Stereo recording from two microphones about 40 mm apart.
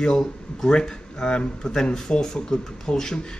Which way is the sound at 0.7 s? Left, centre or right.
Centre.